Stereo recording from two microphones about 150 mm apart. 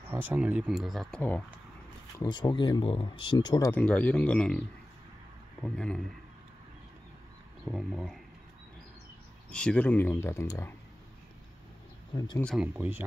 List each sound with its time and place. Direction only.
0.1 s speech: 10° right (ahead or behind)
2.2 s speech: 30° left (ahead or behind)
3.3 s speech: 25° left (ahead or behind)
3.7 s speech: 10° left (ahead or behind)
7.6 s speech: centre (ahead or behind)
9.5 s speech: 5° left (ahead or behind)
12.5 s speech: 10° right (ahead or behind)